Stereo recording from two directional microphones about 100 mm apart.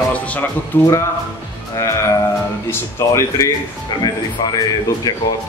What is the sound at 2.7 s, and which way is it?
Speech, 30° left (ahead or behind).